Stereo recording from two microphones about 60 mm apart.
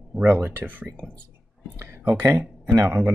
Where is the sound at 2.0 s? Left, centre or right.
Right.